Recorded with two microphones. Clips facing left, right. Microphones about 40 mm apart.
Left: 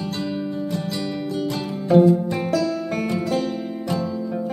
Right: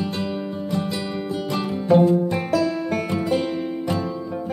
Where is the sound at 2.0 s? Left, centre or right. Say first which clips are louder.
Left 1 dB; centre.